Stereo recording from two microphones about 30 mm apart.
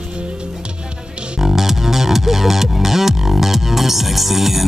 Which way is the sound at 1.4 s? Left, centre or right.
Centre.